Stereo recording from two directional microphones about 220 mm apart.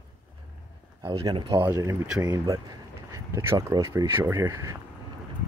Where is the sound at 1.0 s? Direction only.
20° right (ahead or behind).